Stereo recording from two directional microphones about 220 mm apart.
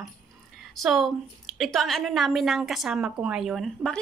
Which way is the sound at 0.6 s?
Centre (ahead or behind).